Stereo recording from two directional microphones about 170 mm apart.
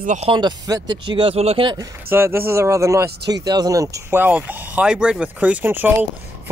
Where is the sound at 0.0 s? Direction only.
45° right (ahead or behind).